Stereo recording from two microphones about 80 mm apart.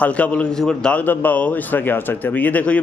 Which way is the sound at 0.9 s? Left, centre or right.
Left.